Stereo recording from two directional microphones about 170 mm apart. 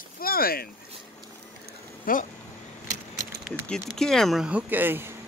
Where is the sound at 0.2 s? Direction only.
60° left (ahead or behind).